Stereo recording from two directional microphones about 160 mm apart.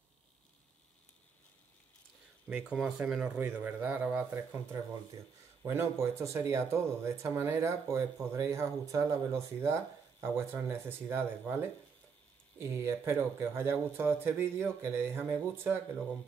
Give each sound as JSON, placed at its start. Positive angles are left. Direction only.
{"t": 2.5, "sound": "speech", "side_deg": -5}
{"t": 5.6, "sound": "speech", "side_deg": -15}
{"t": 12.5, "sound": "speech", "side_deg": -15}